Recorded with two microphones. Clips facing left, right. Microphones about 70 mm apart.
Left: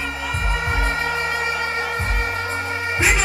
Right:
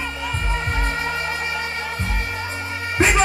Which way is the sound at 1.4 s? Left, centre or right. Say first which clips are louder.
Left 3 dB; left.